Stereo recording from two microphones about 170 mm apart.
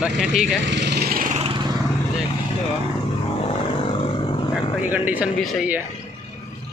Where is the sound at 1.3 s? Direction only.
30° right (ahead or behind).